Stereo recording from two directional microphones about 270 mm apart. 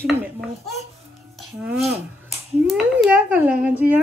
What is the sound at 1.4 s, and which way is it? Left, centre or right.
Dishes, centre.